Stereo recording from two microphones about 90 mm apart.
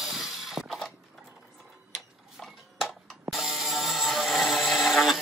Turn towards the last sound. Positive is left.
turn(degrees=0)  # may be behind; listen again after turning